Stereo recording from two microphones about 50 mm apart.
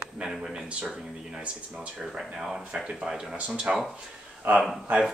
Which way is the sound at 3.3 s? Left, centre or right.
Right.